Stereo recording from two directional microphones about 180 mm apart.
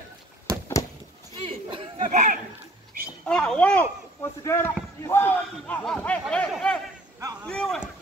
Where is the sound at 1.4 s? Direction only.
30° right (ahead or behind).